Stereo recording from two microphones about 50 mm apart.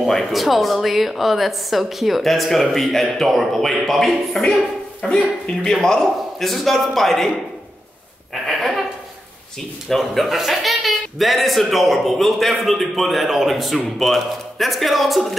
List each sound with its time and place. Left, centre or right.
0.0 s speech: centre
5.0 s speech: centre
8.5 s a sound: centre
9.8 s speech: centre